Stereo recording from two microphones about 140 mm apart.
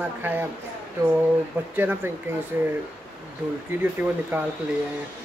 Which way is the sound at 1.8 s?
15° right (ahead or behind).